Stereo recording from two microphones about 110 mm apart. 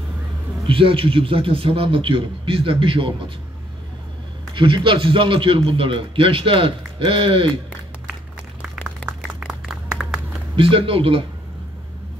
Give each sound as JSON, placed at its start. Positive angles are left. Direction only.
{"t": 0.7, "sound": "speech", "side_deg": -55}
{"t": 4.6, "sound": "speech", "side_deg": -50}
{"t": 8.6, "sound": "applause", "side_deg": -5}
{"t": 10.5, "sound": "speech", "side_deg": -55}